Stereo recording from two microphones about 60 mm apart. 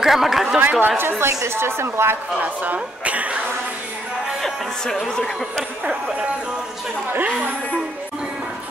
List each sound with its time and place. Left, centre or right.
0.0 s speech: centre
0.7 s a woman's voice: right
2.3 s speech: right
4.8 s speech: centre